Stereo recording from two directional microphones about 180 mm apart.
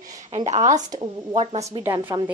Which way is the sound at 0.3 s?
40° right (ahead or behind).